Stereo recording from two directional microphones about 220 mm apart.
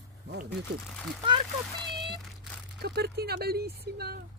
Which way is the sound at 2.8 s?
45° right (ahead or behind).